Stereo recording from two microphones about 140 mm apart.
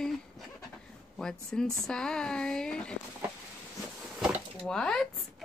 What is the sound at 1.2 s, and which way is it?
Speech, 5° left (ahead or behind).